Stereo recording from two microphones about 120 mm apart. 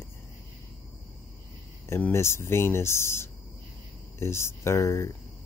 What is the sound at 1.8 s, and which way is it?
Speech, 20° left (ahead or behind).